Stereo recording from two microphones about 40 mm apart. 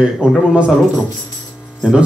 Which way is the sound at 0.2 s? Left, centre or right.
Right.